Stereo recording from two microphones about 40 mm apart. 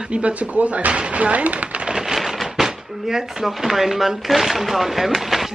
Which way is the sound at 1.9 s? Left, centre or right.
Centre.